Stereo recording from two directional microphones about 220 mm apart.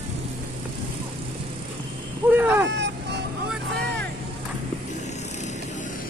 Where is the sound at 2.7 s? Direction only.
50° right (ahead or behind).